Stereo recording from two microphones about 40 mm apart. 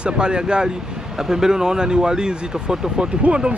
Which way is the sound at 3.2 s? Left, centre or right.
Right.